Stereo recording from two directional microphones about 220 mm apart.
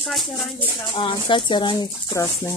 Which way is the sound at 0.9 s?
20° left (ahead or behind).